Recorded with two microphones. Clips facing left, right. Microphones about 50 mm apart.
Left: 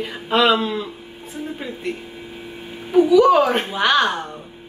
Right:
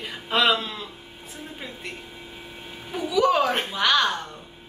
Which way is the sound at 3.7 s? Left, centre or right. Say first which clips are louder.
Left 4 dB; centre.